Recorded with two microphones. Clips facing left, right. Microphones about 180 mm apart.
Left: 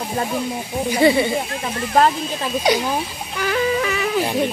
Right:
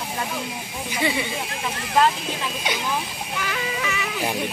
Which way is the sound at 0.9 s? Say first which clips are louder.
Left 10 dB; 35° left (ahead or behind).